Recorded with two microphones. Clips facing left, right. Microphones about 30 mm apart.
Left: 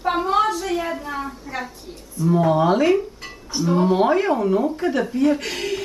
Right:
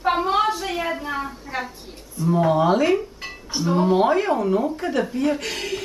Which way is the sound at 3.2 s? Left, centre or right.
Centre.